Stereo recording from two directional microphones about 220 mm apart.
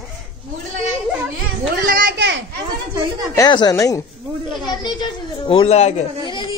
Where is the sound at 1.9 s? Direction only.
45° right (ahead or behind).